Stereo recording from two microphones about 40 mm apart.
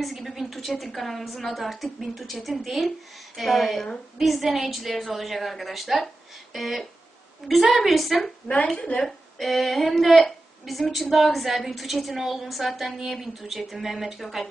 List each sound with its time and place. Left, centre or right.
0.0 s a woman's voice: centre
4.2 s a woman's voice: centre
8.5 s a woman's voice: left
9.0 s a woman's voice: centre